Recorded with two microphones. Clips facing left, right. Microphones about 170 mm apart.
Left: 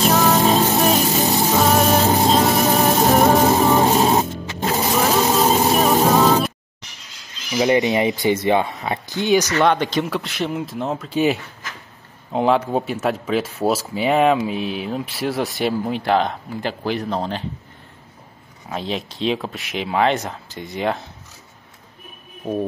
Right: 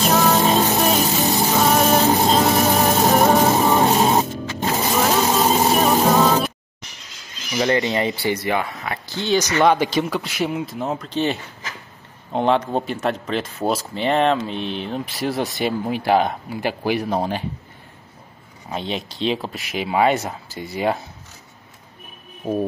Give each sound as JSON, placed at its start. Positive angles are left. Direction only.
{"t": 0.0, "sound": "music", "side_deg": 0}
{"t": 5.3, "sound": "a sound", "side_deg": 0}
{"t": 7.5, "sound": "speech", "side_deg": 15}
{"t": 9.6, "sound": "speech", "side_deg": -5}
{"t": 18.7, "sound": "speech", "side_deg": 0}
{"t": 22.4, "sound": "speech", "side_deg": -5}